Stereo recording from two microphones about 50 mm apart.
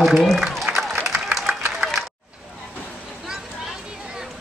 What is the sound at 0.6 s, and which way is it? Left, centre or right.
Applause, centre.